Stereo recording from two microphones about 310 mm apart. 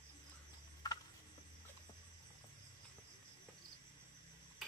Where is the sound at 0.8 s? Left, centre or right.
Centre.